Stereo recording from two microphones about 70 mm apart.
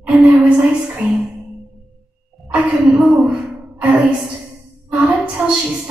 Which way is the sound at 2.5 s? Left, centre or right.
Right.